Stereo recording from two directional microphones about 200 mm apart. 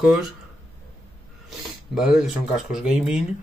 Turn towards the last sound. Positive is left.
turn(degrees=0)  # may be behind; listen again after turning